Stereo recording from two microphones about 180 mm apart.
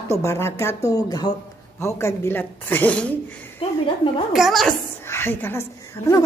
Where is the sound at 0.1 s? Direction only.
15° left (ahead or behind).